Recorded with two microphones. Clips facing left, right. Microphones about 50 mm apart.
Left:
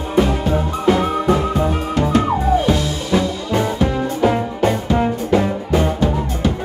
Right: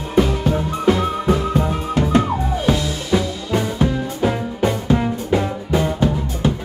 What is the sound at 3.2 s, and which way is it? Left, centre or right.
Music, left.